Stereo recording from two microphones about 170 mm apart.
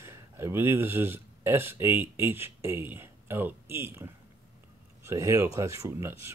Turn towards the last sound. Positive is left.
turn(degrees=-15)  # may be behind; listen again after turning